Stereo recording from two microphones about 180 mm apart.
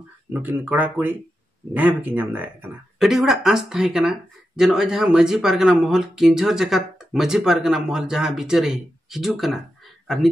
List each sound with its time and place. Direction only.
0.3 s speech: 10° right (ahead or behind)